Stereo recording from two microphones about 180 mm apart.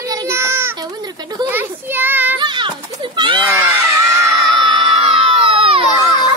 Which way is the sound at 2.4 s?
25° right (ahead or behind).